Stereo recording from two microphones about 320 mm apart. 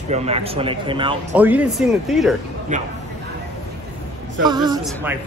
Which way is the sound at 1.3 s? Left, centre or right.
Centre.